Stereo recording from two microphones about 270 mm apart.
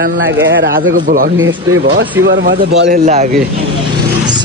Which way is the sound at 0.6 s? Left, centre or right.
Right.